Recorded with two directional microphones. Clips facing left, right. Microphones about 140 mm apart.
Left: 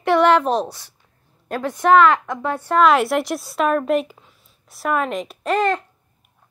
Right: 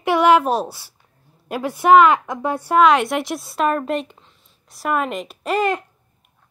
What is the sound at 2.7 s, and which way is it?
A woman's voice, centre (ahead or behind).